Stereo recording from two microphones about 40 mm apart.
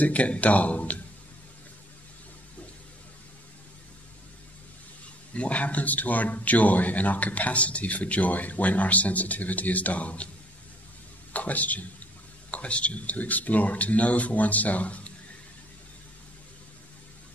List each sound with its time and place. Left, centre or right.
0.0 s speech: left
5.3 s speech: left
11.3 s speech: left